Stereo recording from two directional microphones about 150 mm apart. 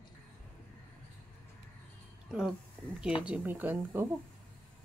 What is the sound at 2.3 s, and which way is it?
A woman's voice, 5° right (ahead or behind).